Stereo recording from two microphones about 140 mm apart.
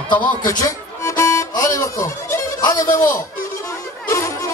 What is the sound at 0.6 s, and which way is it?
Music, 20° left (ahead or behind).